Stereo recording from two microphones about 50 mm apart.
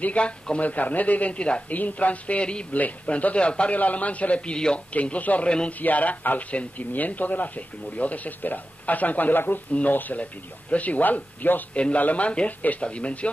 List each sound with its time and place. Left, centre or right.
0.0 s a man's voice: left
4.9 s a man's voice: left
11.7 s a man's voice: left